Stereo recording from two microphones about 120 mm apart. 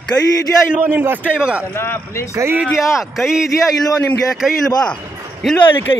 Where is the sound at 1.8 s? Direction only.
20° left (ahead or behind).